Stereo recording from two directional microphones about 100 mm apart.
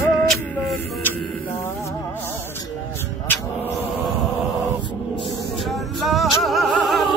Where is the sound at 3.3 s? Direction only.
20° left (ahead or behind).